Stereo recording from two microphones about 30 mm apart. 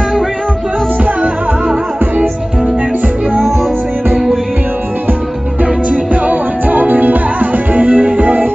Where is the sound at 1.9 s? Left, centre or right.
Right.